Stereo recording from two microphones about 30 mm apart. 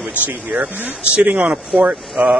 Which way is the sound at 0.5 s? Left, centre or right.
Right.